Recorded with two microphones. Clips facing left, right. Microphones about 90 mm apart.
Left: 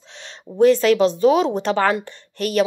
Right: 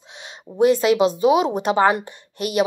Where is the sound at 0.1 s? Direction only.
10° right (ahead or behind).